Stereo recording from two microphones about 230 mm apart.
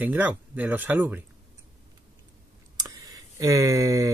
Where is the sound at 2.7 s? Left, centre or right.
Centre.